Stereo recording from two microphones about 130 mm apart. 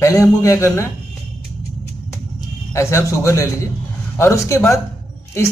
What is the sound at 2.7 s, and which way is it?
Speech, 20° left (ahead or behind).